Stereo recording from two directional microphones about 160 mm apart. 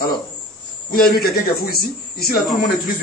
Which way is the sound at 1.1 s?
70° left (ahead or behind).